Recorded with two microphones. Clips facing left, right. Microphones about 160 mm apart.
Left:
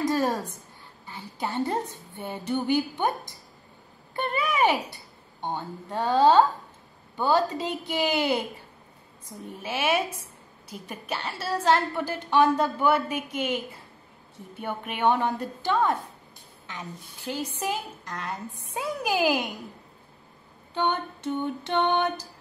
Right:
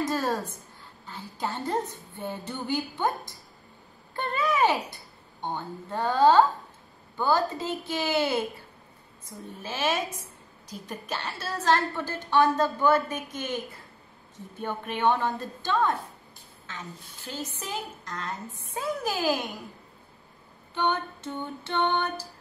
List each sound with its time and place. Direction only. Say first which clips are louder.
0.0 s a sound: left 2 dB; 15° left (ahead or behind)
1.0 s a woman's voice: even; 15° left (ahead or behind)
4.1 s a woman's voice: even; 15° left (ahead or behind)
9.6 s a woman's voice: left 2 dB; 10° left (ahead or behind)
20.7 s a woman's voice: left 1 dB; 15° left (ahead or behind)